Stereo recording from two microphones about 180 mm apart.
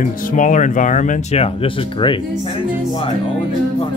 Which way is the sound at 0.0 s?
45° left (ahead or behind).